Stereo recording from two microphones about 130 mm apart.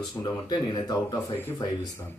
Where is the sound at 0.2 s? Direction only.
35° left (ahead or behind).